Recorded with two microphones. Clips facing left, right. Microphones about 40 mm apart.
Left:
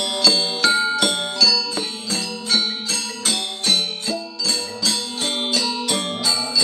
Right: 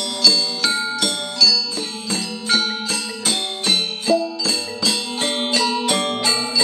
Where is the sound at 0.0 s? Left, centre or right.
Left.